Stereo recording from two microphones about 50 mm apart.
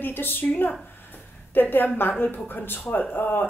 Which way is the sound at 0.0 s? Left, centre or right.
Left.